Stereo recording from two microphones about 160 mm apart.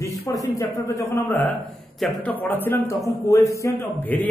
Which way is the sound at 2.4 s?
10° left (ahead or behind).